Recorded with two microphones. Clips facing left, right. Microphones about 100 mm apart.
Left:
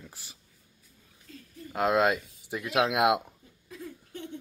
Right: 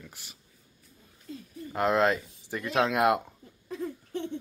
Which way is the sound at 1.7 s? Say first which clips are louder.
Even; 15° left (ahead or behind).